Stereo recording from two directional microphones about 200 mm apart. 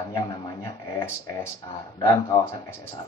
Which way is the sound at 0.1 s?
20° left (ahead or behind).